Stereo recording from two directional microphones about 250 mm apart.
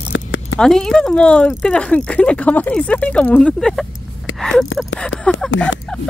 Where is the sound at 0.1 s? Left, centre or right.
Left.